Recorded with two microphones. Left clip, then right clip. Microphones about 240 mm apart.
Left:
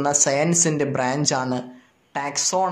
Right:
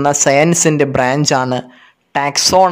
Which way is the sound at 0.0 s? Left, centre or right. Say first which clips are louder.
Right 9 dB; right.